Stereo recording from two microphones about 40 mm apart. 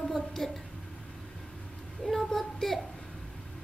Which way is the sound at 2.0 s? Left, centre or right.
Centre.